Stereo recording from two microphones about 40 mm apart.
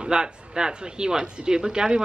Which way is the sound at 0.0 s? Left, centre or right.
Right.